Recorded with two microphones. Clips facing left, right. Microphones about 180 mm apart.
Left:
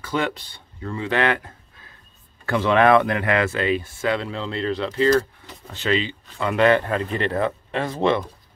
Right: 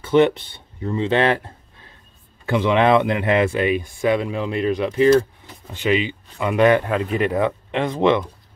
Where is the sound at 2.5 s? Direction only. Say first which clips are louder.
Even; 15° right (ahead or behind).